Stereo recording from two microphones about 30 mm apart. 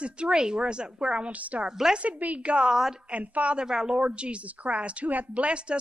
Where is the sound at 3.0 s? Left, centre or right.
Right.